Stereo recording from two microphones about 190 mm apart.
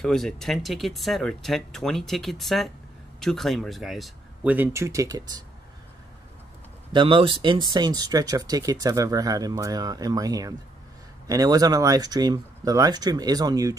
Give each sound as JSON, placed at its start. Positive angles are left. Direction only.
{"t": 0.0, "sound": "speech", "side_deg": 0}
{"t": 6.9, "sound": "speech", "side_deg": -25}